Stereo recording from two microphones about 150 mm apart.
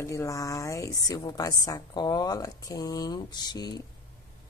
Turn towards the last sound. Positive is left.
turn(degrees=25)  # may be behind; listen again after turning